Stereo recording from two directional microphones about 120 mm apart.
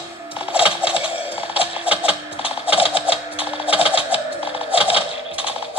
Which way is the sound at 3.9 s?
50° left (ahead or behind).